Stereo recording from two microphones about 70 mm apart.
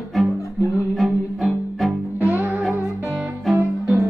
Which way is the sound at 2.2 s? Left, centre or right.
Right.